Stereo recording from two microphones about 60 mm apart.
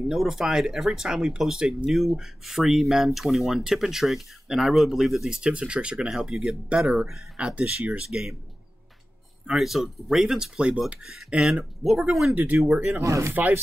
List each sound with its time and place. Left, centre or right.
0.1 s speech: centre
6.0 s speech: centre
9.5 s speech: centre
12.6 s speech: right
13.0 s speech: right
13.3 s speech: right